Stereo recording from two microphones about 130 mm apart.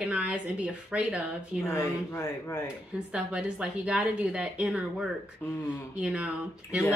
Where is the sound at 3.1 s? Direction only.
5° right (ahead or behind).